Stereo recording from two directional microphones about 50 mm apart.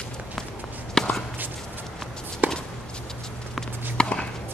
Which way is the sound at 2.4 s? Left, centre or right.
Right.